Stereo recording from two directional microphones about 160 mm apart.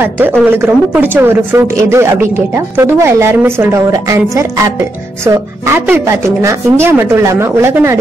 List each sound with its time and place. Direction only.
0.0 s speech: 15° right (ahead or behind)
5.9 s speech: 15° right (ahead or behind)